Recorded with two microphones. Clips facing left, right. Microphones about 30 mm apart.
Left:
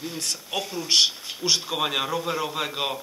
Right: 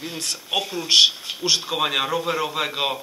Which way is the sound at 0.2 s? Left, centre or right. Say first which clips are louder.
Right 5 dB; right.